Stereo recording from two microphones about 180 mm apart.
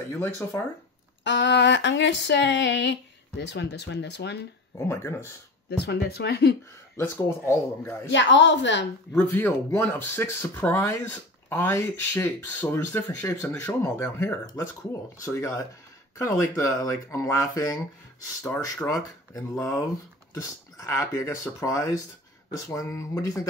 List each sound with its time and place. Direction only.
0.1 s speech: 15° left (ahead or behind)
1.2 s a sound: 85° left
4.7 s speech: 15° left (ahead or behind)
5.7 s speech: 65° left (ahead or behind)
7.0 s speech: 15° left (ahead or behind)
8.1 s a woman's voice: 85° left
9.1 s speech: 10° left (ahead or behind)